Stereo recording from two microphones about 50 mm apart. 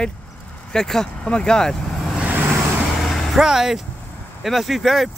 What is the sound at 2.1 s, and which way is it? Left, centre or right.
Vehicle, right.